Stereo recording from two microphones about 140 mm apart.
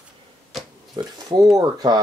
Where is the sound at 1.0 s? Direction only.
25° right (ahead or behind).